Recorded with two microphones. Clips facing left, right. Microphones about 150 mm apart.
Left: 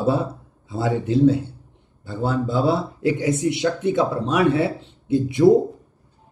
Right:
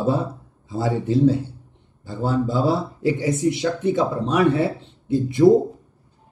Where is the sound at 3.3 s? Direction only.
Centre (ahead or behind).